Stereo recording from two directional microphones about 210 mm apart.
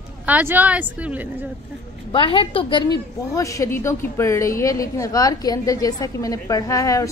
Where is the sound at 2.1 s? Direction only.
25° left (ahead or behind).